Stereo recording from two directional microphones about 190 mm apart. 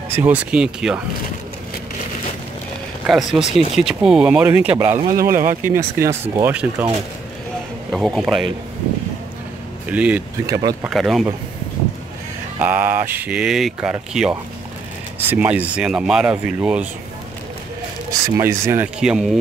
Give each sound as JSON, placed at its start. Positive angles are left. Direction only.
{"t": 0.1, "sound": "speech", "side_deg": -10}
{"t": 3.1, "sound": "speech", "side_deg": 0}
{"t": 4.9, "sound": "speech", "side_deg": -45}
{"t": 5.6, "sound": "speech", "side_deg": -10}
{"t": 7.9, "sound": "speech", "side_deg": 0}
{"t": 9.8, "sound": "speech", "side_deg": -5}
{"t": 10.5, "sound": "speech", "side_deg": -20}
{"t": 10.8, "sound": "speech", "side_deg": 0}
{"t": 12.5, "sound": "speech", "side_deg": -10}
{"t": 18.3, "sound": "speech", "side_deg": -15}